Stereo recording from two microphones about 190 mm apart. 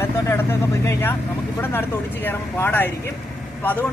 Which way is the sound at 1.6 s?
10° left (ahead or behind).